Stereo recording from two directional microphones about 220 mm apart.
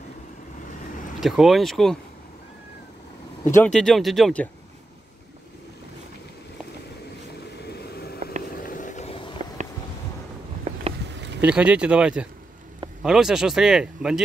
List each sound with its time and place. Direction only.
1.2 s speech: centre (ahead or behind)
3.4 s speech: 5° left (ahead or behind)
7.6 s vehicle: 45° left (ahead or behind)
8.5 s a sound: 40° left (ahead or behind)
11.1 s vehicle: 50° right (ahead or behind)
11.4 s speech: 5° right (ahead or behind)